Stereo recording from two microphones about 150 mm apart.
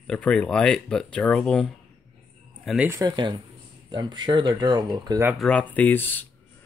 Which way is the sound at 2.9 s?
25° right (ahead or behind).